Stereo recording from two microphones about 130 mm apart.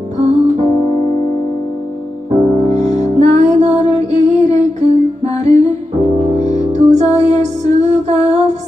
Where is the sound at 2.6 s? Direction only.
60° right (ahead or behind).